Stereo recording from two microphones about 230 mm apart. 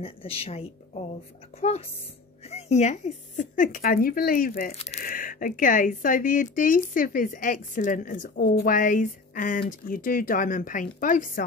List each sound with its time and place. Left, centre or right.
0.0 s a woman's voice: left
2.4 s speech: left